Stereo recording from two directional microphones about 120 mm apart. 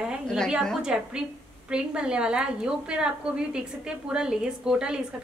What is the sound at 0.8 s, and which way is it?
A woman's voice, 5° right (ahead or behind).